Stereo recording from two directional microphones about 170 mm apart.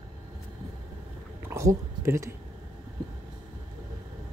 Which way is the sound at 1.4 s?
15° right (ahead or behind).